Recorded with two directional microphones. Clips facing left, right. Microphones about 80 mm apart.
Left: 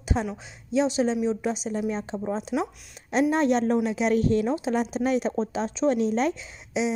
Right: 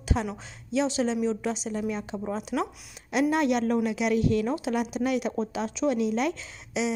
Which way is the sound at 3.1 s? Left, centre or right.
Left.